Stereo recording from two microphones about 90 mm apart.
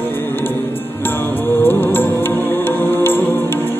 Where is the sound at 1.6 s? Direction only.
25° left (ahead or behind).